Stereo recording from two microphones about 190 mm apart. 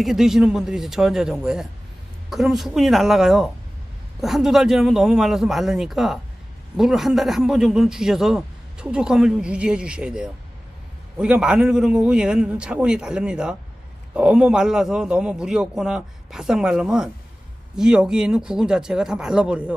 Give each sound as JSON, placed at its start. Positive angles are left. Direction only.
{"t": 0.0, "sound": "a man's voice", "side_deg": 0}